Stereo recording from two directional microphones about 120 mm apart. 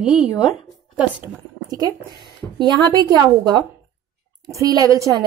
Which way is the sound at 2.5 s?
40° right (ahead or behind).